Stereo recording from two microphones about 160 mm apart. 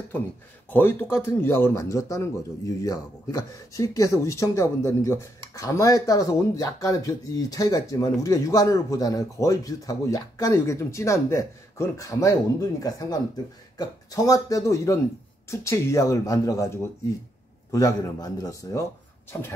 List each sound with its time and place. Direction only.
0.7 s speech: 10° left (ahead or behind)